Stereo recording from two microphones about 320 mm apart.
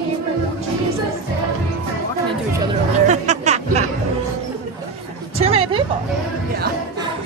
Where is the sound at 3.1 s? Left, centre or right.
Right.